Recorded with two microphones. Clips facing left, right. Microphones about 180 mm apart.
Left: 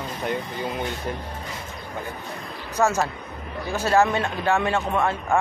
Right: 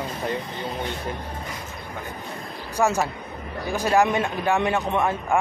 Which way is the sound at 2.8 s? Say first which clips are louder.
Even; 15° right (ahead or behind).